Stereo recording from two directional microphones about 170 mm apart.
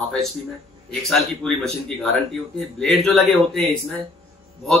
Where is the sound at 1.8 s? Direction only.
5° left (ahead or behind).